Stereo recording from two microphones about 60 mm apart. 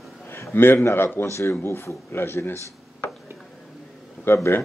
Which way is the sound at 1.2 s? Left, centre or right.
Left.